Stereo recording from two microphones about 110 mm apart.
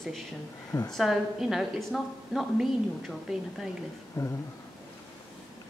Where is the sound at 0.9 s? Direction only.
5° right (ahead or behind).